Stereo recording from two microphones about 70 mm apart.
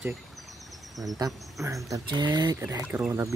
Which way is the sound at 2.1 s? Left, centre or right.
Right.